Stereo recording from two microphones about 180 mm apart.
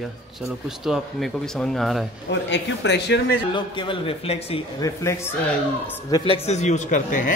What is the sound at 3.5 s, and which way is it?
A man's voice, 25° left (ahead or behind).